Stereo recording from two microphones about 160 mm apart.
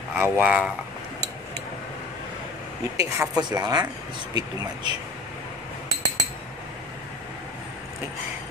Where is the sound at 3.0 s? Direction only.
25° right (ahead or behind).